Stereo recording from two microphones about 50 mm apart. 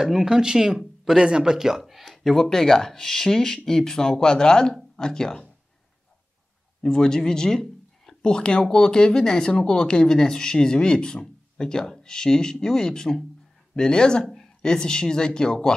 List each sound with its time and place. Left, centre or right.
0.0 s speech: centre
1.9 s a sound: centre
2.3 s speech: centre
6.8 s speech: centre